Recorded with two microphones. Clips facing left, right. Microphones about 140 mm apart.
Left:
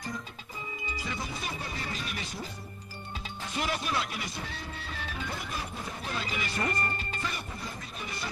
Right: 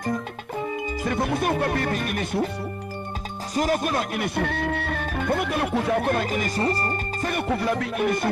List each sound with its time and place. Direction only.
0.0 s speech: 55° right (ahead or behind)
3.5 s speech: 45° right (ahead or behind)
6.6 s speech: 35° right (ahead or behind)
7.3 s speech: 75° right (ahead or behind)